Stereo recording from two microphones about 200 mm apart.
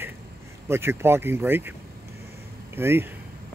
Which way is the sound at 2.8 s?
10° right (ahead or behind).